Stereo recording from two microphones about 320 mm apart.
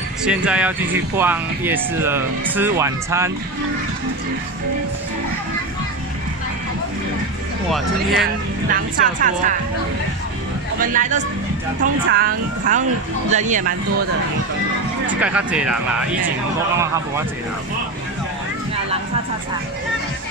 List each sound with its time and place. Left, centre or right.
0.2 s speech: centre
7.7 s speech: centre
8.9 s a woman's voice: right
10.8 s a woman's voice: right
15.0 s speech: centre